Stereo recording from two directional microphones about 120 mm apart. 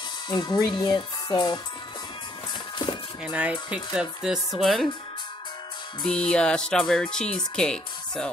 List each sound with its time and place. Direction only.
0.3 s speech: 35° left (ahead or behind)
3.3 s speech: 10° right (ahead or behind)
6.0 s speech: 5° left (ahead or behind)